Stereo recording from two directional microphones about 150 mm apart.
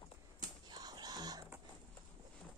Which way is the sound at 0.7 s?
25° right (ahead or behind).